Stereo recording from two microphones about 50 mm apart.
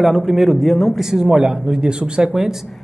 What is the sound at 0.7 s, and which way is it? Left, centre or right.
Speech, centre.